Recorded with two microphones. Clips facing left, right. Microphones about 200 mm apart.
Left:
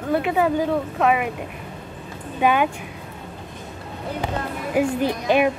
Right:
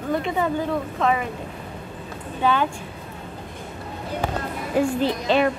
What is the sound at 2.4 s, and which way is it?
Speech, 15° left (ahead or behind).